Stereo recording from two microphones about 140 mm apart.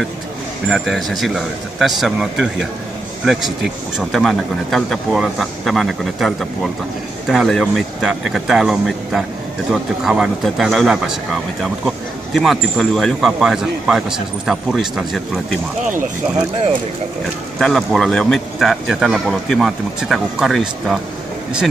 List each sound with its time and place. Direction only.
0.7 s a man's voice: centre (ahead or behind)
4.0 s a man's voice: centre (ahead or behind)
12.4 s a man's voice: centre (ahead or behind)
15.8 s speech: 70° right (ahead or behind)
17.6 s a man's voice: centre (ahead or behind)